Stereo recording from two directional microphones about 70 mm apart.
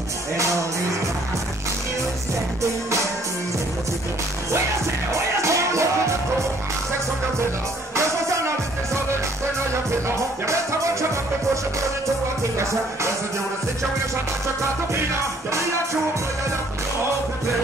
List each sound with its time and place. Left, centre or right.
5.1 s music: right
7.9 s music: right
10.4 s music: right